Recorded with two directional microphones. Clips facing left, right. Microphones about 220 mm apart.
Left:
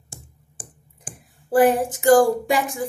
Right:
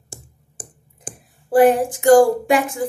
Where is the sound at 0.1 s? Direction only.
40° right (ahead or behind).